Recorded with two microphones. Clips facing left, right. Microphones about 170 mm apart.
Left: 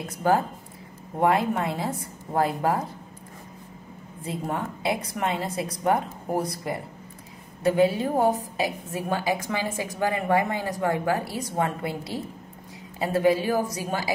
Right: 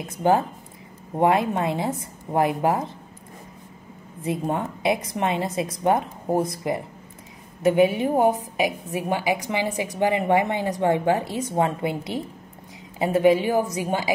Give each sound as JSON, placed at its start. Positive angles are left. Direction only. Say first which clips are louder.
{"t": 1.1, "sound": "a woman's voice", "louder": "right 2 dB", "side_deg": -20}
{"t": 4.2, "sound": "a woman's voice", "louder": "right 4 dB", "side_deg": -20}